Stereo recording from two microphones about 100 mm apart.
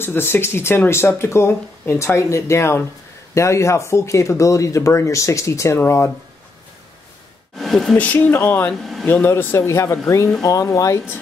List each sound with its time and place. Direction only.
0.0 s speech: 25° left (ahead or behind)
7.5 s speech: centre (ahead or behind)
8.0 s speech: 15° left (ahead or behind); by 11.0 s 30° left (ahead or behind)